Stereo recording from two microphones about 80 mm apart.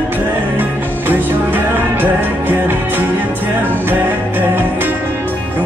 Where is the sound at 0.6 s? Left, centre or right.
Right.